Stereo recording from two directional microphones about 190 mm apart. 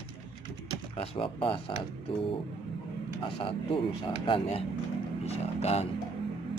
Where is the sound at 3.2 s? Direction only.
30° left (ahead or behind).